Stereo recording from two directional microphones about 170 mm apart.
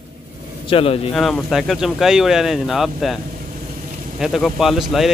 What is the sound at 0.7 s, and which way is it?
Speech, 35° left (ahead or behind).